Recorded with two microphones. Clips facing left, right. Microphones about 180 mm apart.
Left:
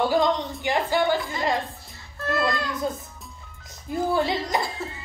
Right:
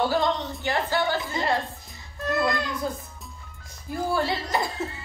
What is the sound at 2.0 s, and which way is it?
Music, 15° right (ahead or behind).